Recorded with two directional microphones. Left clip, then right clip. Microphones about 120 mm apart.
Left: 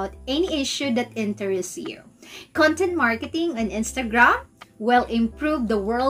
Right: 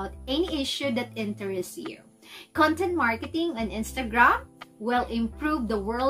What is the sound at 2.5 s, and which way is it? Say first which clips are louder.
Speech: left 4 dB; 10° right (ahead or behind).